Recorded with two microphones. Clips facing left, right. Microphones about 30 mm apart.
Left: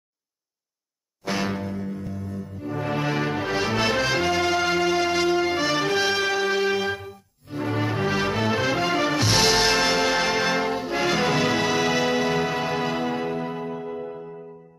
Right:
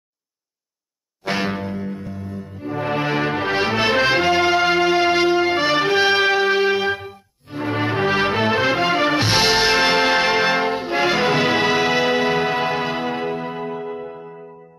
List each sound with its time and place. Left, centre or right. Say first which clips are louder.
1.2 s music: right 4 dB; right